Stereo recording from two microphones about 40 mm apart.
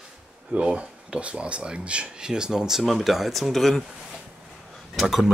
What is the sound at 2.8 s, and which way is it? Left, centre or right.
Speech, centre.